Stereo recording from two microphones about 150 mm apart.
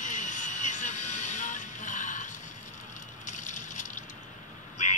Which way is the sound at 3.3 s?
55° left (ahead or behind).